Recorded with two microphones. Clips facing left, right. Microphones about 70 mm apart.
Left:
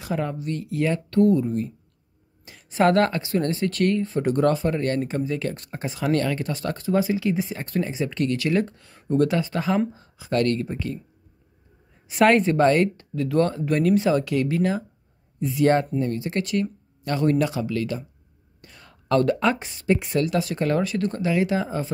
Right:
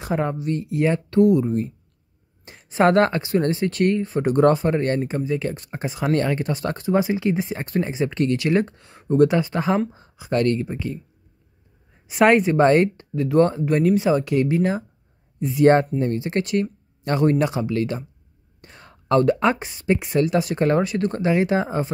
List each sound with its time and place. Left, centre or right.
0.0 s speech: right
2.7 s speech: right
5.0 s speech: centre
9.9 s a sound: right
10.2 s speech: centre
12.1 s speech: centre
12.6 s speech: right
18.6 s whispering: right
19.1 s speech: right
21.1 s speech: right